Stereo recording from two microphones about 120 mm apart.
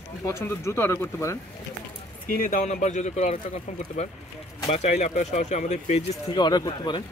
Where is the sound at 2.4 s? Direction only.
90° left.